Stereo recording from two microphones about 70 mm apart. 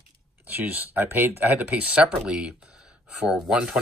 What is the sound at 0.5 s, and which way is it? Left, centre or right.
Speech, right.